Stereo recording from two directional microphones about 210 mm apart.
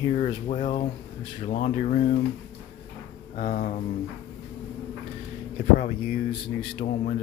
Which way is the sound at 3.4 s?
40° left (ahead or behind).